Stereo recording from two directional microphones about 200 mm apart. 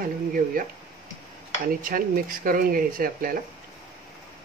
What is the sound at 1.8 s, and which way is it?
Speech, 45° right (ahead or behind).